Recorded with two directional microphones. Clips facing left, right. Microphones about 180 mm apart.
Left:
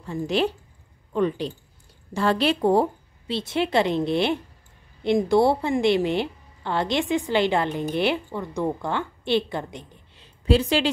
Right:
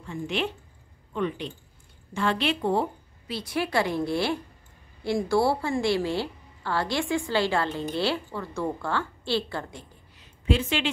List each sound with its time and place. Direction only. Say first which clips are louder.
0.0 s a woman's voice: left 6 dB; 35° left (ahead or behind)
3.3 s a woman's voice: left 4 dB; 25° left (ahead or behind)